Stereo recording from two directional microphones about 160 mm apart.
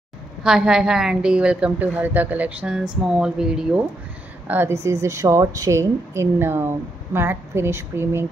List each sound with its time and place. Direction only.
0.4 s a woman's voice: 5° right (ahead or behind)